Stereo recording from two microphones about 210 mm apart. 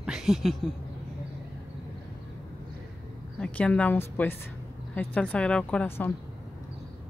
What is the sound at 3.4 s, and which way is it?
A woman's voice, 5° left (ahead or behind).